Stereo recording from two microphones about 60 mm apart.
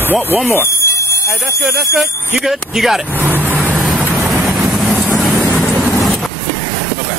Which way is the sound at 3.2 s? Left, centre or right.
Right.